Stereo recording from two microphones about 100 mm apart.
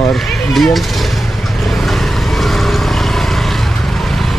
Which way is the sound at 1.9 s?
Centre (ahead or behind).